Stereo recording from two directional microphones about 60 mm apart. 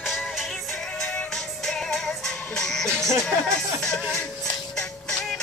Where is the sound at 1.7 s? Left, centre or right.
Centre.